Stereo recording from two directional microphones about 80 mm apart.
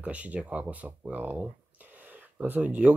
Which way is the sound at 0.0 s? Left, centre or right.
Centre.